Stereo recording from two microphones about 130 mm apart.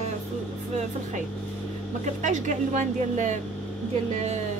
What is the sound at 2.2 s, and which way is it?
Speech, 70° right (ahead or behind).